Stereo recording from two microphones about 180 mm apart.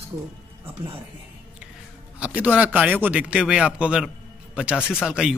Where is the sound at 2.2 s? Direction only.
10° right (ahead or behind).